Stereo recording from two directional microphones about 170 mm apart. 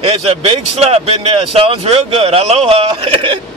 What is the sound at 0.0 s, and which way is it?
Speech, 35° right (ahead or behind).